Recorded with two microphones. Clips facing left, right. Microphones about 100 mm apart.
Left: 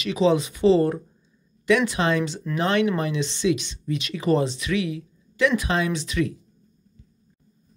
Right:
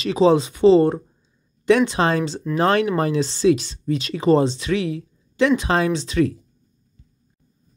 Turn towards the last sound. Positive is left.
turn(degrees=-30)  # may be behind; listen again after turning